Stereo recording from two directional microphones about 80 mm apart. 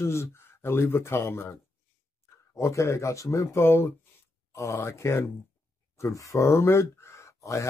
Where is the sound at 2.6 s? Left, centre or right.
Left.